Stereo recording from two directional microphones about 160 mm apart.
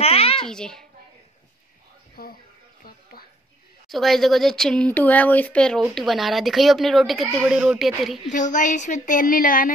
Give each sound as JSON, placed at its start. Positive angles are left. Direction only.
{"t": 0.0, "sound": "babbling", "side_deg": 40}
{"t": 0.4, "sound": "speech", "side_deg": 5}
{"t": 2.2, "sound": "speech", "side_deg": 70}
{"t": 2.8, "sound": "a sound", "side_deg": 65}
{"t": 3.9, "sound": "speech", "side_deg": 0}
{"t": 8.3, "sound": "a woman's voice", "side_deg": 50}